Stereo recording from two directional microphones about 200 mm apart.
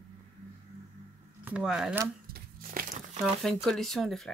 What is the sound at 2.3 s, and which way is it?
Crumpling, 45° right (ahead or behind).